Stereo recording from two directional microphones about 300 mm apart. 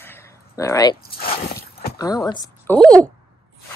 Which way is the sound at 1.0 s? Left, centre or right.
Left.